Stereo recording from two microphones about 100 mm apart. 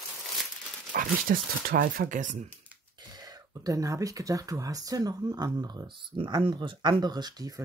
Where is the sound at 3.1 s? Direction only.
40° right (ahead or behind).